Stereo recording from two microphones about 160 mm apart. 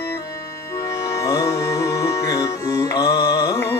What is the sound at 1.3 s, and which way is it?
Music, 20° left (ahead or behind).